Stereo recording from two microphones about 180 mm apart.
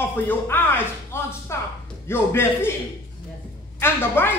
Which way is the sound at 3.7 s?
15° left (ahead or behind).